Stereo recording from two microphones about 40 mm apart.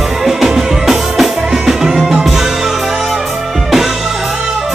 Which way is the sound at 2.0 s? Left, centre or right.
Centre.